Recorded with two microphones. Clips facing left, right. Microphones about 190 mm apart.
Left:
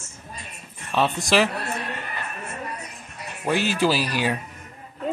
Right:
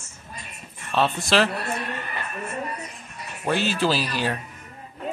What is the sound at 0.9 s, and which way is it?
Speech, 10° left (ahead or behind).